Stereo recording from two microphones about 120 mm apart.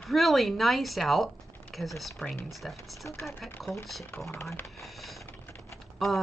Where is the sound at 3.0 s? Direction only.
20° left (ahead or behind).